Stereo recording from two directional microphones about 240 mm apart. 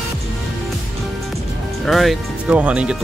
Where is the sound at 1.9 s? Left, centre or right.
Centre.